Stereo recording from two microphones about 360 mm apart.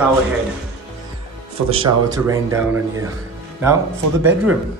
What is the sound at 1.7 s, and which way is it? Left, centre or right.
Speech, centre.